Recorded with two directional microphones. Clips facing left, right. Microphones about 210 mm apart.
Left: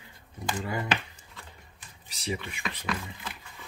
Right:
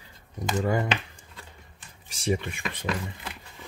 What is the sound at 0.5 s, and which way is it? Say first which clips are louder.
Speech: right 8 dB; 45° right (ahead or behind).